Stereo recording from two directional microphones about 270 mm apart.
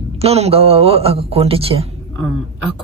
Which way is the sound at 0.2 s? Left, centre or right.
Right.